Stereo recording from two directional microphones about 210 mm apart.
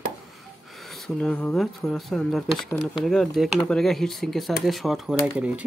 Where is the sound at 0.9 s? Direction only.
5° left (ahead or behind).